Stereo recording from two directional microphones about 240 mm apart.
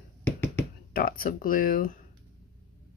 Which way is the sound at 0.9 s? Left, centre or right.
Left.